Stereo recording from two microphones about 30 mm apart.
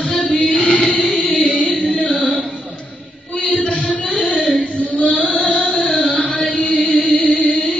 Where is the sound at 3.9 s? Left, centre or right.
Left.